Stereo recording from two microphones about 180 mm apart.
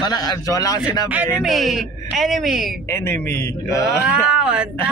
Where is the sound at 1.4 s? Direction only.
Centre (ahead or behind).